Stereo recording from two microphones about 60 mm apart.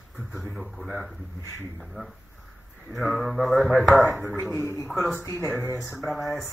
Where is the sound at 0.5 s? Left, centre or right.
Centre.